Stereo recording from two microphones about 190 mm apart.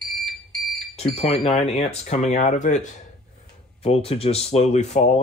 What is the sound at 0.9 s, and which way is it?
Speech, 30° left (ahead or behind).